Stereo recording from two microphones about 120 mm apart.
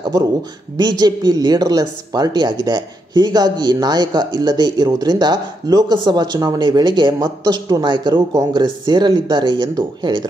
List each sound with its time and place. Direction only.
0.1 s speech: 35° right (ahead or behind)